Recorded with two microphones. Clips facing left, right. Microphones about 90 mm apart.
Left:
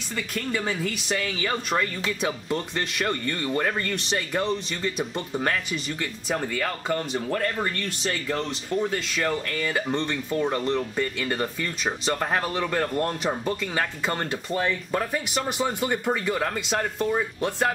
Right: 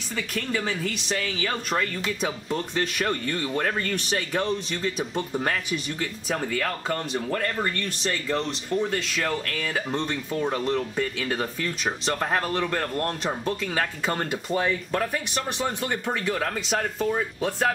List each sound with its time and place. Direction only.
0.1 s speech: centre (ahead or behind)
14.9 s speech: 5° left (ahead or behind)